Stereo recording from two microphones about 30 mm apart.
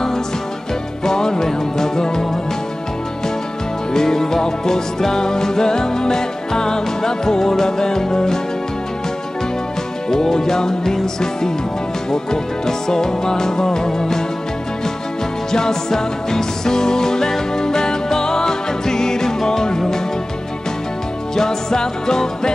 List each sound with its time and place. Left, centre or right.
1.0 s music: left
3.9 s music: centre
10.0 s music: centre
15.5 s music: centre
21.4 s music: centre